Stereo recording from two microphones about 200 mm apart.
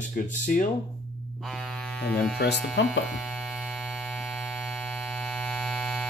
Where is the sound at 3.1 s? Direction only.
Centre (ahead or behind).